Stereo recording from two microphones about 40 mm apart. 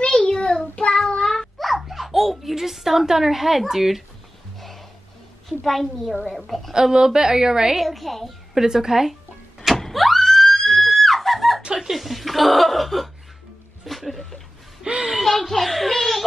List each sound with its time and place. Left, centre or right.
0.0 s child singing: left
1.0 s child singing: centre
1.6 s a child's voice: centre
4.6 s music: centre
5.5 s speech: centre
6.7 s a woman's voice: centre
7.7 s speech: centre
8.5 s a woman's voice: centre
9.8 s a sound: centre
11.6 s a sound: centre
13.8 s music: centre
15.1 s speech: centre